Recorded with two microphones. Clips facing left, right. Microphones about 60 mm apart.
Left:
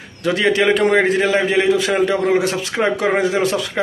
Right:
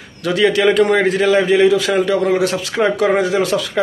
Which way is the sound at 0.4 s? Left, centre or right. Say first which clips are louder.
Right 3 dB; left.